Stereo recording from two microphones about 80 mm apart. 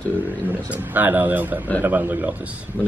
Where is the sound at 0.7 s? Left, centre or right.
Right.